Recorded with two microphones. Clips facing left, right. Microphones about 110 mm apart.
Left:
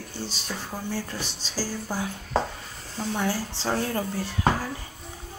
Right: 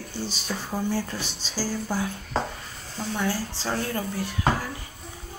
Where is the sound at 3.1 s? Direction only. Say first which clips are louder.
Even; 20° left (ahead or behind).